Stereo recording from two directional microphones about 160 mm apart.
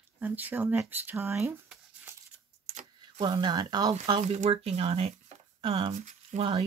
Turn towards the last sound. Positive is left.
turn(degrees=-40)  # may be behind; listen again after turning